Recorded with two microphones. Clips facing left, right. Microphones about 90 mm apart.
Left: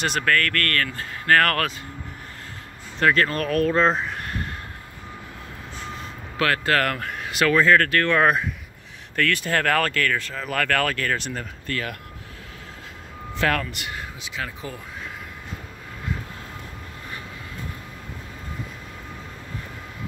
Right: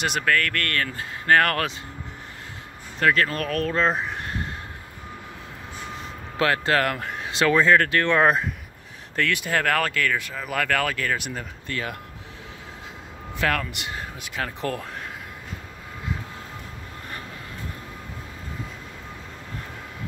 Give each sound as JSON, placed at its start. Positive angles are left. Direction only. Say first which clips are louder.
{"t": 0.0, "sound": "speech", "louder": "left 1 dB", "side_deg": -10}
{"t": 3.0, "sound": "speech", "louder": "left 1 dB", "side_deg": 0}
{"t": 3.9, "sound": "a sound", "louder": "left 1 dB", "side_deg": -20}
{"t": 6.3, "sound": "speech", "louder": "even", "side_deg": -25}
{"t": 13.4, "sound": "a man's voice", "louder": "left 1 dB", "side_deg": 0}
{"t": 13.7, "sound": "speech", "louder": "even", "side_deg": -25}
{"t": 14.2, "sound": "speech", "louder": "right 2 dB", "side_deg": -45}